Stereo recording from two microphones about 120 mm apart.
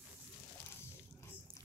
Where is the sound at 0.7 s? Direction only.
20° left (ahead or behind).